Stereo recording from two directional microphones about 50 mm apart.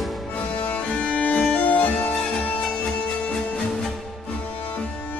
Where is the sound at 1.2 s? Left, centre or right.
Left.